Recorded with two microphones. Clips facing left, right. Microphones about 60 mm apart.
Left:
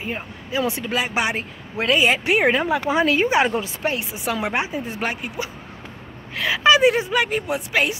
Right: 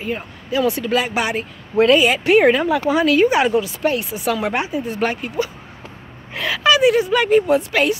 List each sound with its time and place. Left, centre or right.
0.0 s speech: left
6.5 s speech: left
7.1 s speech: centre